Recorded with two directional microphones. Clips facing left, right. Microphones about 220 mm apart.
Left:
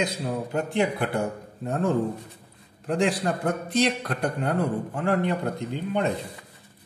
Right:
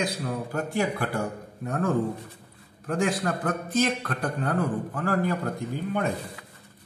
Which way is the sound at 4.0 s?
25° left (ahead or behind).